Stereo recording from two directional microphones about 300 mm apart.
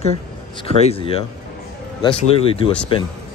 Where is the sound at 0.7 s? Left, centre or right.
Centre.